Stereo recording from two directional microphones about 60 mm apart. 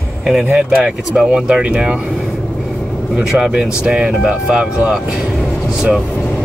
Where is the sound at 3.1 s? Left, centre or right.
Centre.